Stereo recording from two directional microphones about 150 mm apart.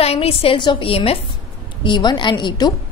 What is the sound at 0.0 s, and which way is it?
A woman's voice, 40° left (ahead or behind).